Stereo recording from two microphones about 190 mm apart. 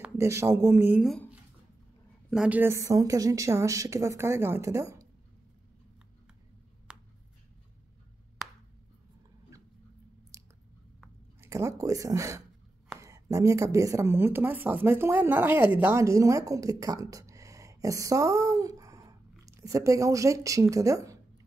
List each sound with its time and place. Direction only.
0.0 s speech: 15° right (ahead or behind)
1.0 s speech: centre (ahead or behind)
2.3 s speech: 5° right (ahead or behind)
6.9 s a sound: 5° right (ahead or behind)
10.3 s chewing: 15° right (ahead or behind)
11.4 s a woman's voice: 15° right (ahead or behind)